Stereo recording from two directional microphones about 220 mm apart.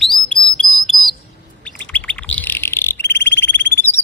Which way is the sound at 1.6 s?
5° left (ahead or behind).